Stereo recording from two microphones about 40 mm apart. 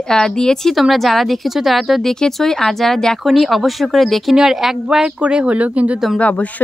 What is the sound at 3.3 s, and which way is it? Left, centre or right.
Speech, centre.